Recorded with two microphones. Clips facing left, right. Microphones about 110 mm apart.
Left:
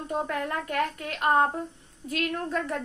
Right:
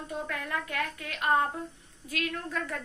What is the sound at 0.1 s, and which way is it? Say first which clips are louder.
A woman's voice: left 5 dB; 35° left (ahead or behind).